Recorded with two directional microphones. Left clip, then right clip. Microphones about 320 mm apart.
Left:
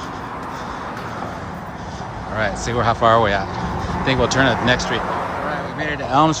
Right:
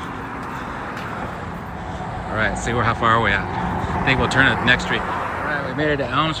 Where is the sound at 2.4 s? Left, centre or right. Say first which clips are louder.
Left 1 dB; centre.